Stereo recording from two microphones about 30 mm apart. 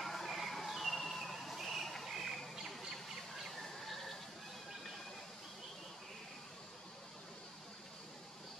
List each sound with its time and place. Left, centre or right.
0.0 s music: centre
2.0 s bird: centre